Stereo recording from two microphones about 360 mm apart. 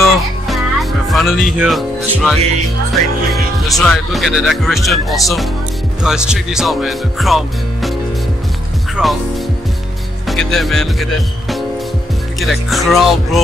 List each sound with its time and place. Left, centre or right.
0.0 s music: centre
2.9 s speech: centre
9.0 s speech: centre
10.2 s speech: centre